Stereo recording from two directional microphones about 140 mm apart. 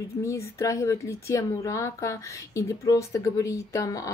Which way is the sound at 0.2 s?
20° left (ahead or behind).